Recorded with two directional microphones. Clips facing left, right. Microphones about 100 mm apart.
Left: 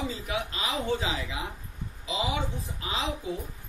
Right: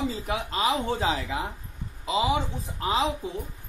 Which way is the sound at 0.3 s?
40° right (ahead or behind).